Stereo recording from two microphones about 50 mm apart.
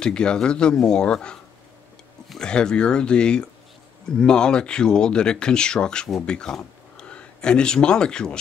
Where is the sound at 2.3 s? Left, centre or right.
Centre.